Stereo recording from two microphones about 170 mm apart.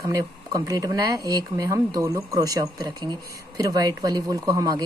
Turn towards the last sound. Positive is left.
turn(degrees=-20)  # may be behind; listen again after turning